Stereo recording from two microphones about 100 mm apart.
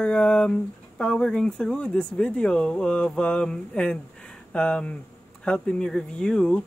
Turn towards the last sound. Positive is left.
turn(degrees=5)  # may be behind; listen again after turning